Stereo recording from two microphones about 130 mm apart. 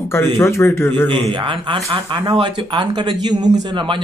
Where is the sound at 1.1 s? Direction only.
40° right (ahead or behind).